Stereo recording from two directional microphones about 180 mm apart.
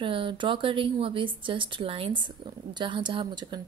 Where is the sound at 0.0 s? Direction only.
30° right (ahead or behind).